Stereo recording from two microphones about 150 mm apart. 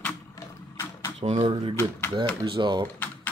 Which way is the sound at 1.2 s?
40° right (ahead or behind).